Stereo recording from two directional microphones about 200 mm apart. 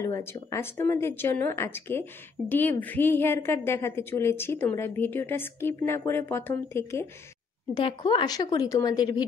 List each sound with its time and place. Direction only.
0.0 s speech: 15° left (ahead or behind)
7.7 s a woman's voice: 25° left (ahead or behind)